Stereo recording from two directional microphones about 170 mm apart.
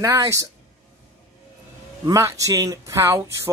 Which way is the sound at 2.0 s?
20° right (ahead or behind).